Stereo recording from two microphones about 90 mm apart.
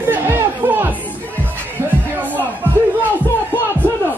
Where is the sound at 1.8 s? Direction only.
20° right (ahead or behind).